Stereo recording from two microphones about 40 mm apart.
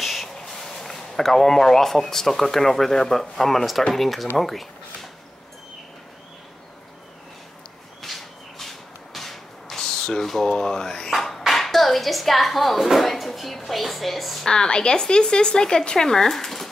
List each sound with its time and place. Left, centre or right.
0.0 s a sound: centre
0.5 s speech: centre
8.0 s whip: centre
9.8 s a sound: centre
10.4 s speech: centre
14.4 s speech: centre